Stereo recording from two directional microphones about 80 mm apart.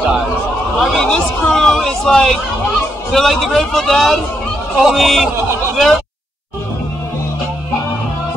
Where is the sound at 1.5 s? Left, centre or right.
Centre.